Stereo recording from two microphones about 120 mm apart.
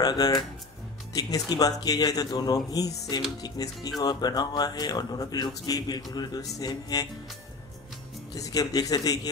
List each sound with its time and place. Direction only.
0.0 s speech: 30° left (ahead or behind)
8.4 s speech: 30° left (ahead or behind)